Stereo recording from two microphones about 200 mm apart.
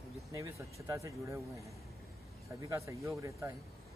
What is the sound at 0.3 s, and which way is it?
Speech, 15° right (ahead or behind).